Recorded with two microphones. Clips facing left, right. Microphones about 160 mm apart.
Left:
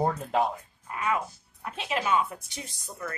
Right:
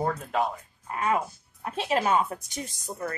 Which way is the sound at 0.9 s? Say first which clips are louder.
Right 3 dB; 40° right (ahead or behind).